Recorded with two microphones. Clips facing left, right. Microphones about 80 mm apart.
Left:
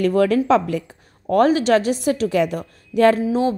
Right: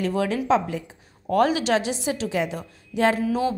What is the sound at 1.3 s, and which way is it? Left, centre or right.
A woman's voice, left.